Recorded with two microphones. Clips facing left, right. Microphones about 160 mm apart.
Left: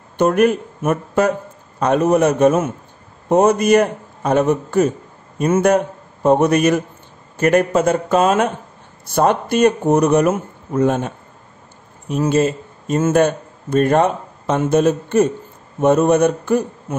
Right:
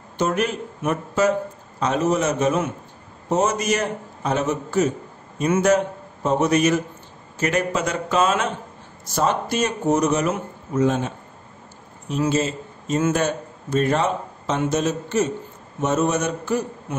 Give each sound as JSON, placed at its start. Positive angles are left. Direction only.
{"t": 0.2, "sound": "a man's voice", "side_deg": 55}
{"t": 9.0, "sound": "a man's voice", "side_deg": 60}